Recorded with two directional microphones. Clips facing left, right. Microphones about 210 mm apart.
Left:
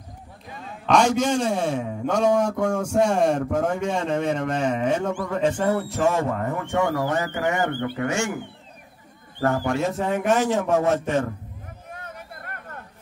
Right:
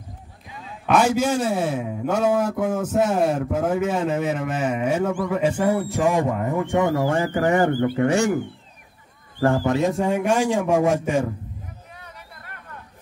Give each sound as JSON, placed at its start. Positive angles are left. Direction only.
{"t": 0.8, "sound": "a man's voice", "side_deg": -5}
{"t": 9.4, "sound": "speech", "side_deg": -30}
{"t": 10.0, "sound": "a man's voice", "side_deg": -10}
{"t": 11.9, "sound": "vehicle", "side_deg": 50}